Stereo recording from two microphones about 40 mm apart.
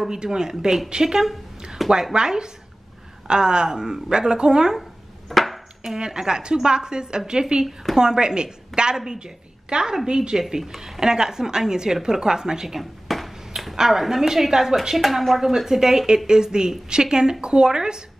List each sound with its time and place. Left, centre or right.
0.1 s a woman's voice: centre
1.8 s a sound: centre
2.1 s a woman's voice: centre
5.3 s chopping: centre
5.9 s a woman's voice: centre
7.6 s speech: centre
8.0 s a woman's voice: centre
10.6 s a woman's voice: centre